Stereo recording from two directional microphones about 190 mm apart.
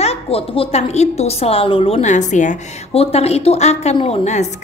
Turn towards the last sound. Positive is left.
turn(degrees=35)  # may be behind; listen again after turning